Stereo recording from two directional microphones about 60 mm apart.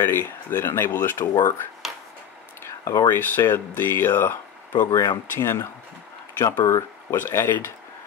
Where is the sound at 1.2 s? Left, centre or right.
Left.